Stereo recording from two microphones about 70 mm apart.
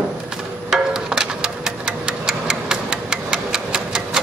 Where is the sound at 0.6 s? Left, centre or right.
Centre.